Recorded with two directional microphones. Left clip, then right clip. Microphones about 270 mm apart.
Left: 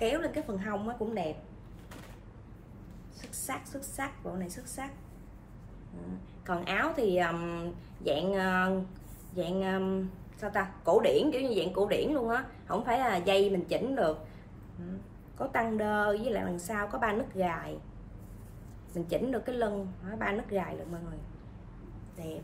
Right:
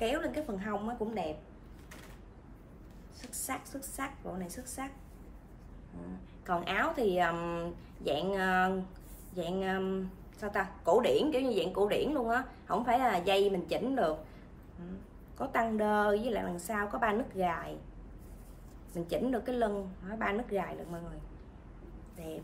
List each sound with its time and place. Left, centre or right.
0.0 s a woman's voice: centre
3.2 s a woman's voice: centre
6.4 s a woman's voice: centre
15.3 s a woman's voice: centre
18.9 s a woman's voice: centre